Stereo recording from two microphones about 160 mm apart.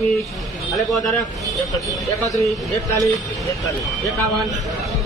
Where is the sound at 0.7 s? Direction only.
Centre (ahead or behind).